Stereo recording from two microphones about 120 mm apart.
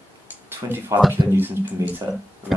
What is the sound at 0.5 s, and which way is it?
Speech, 15° right (ahead or behind).